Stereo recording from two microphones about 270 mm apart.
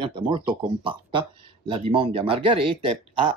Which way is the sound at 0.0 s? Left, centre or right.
Centre.